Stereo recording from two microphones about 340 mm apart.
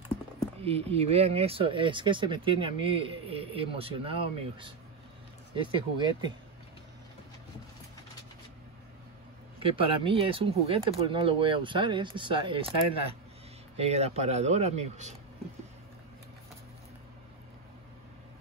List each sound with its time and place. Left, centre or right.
0.6 s speech: centre
9.6 s speech: centre
13.7 s speech: centre